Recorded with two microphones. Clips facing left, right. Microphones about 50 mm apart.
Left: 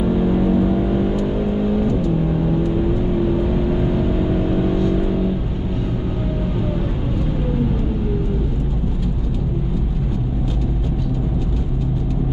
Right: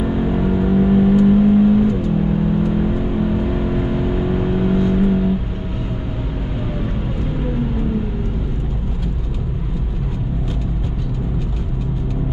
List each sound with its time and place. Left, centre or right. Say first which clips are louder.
0.0 s vehicle: left 1 dB; centre
4.3 s vehicle: right 1 dB; centre